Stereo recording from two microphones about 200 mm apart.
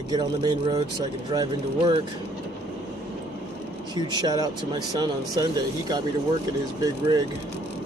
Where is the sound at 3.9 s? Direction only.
20° right (ahead or behind).